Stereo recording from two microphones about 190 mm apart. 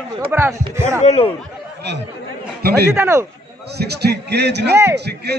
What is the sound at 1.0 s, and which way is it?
Speech, 35° left (ahead or behind).